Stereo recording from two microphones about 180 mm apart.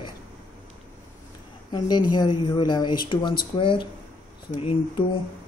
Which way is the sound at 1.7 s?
25° left (ahead or behind).